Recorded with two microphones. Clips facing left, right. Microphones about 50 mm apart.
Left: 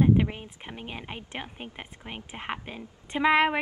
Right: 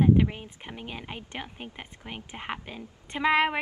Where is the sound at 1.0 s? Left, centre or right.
Centre.